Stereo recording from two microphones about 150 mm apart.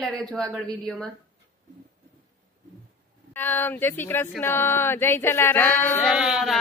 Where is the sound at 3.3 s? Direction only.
15° left (ahead or behind).